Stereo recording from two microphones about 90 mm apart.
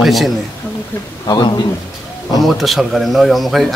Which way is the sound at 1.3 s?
60° left (ahead or behind).